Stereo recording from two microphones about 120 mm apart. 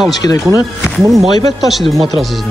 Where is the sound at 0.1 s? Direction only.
35° left (ahead or behind).